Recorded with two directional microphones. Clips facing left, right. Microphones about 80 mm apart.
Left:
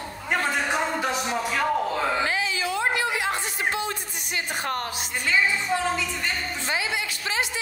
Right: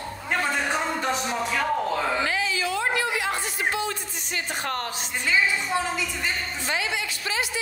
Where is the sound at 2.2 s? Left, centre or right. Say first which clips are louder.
Even; left.